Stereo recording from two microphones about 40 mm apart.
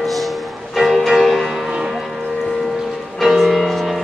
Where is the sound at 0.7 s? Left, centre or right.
Centre.